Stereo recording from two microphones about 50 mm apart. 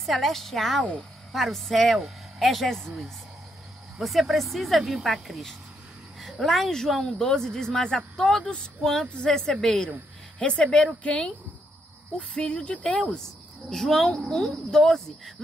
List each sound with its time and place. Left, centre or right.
0.0 s speech: centre
13.7 s speech: centre